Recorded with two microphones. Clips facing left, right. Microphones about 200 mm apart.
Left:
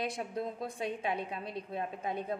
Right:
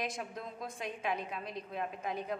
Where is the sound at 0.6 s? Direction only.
60° left (ahead or behind).